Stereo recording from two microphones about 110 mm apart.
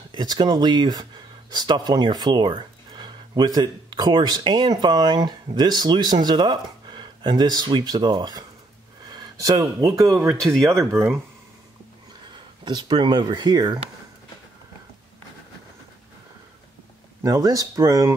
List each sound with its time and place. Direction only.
0.1 s speech: 40° right (ahead or behind)
10.4 s speech: 5° left (ahead or behind)
10.9 s speech: 25° right (ahead or behind)
12.6 s speech: 45° right (ahead or behind)
17.2 s speech: 35° right (ahead or behind)